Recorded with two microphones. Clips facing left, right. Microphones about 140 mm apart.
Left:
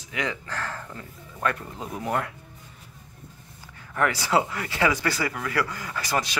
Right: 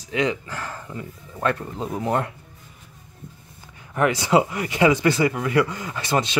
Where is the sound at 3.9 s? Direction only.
20° right (ahead or behind).